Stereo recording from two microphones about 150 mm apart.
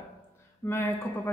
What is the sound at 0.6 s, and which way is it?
Speech, 15° left (ahead or behind).